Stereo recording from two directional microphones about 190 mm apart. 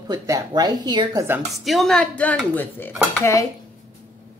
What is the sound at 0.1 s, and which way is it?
A woman's voice, 20° right (ahead or behind).